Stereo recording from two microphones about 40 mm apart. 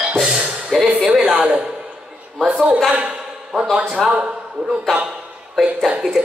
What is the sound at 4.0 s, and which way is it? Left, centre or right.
Speech, centre.